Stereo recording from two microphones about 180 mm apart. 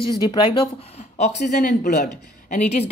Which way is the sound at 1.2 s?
45° left (ahead or behind).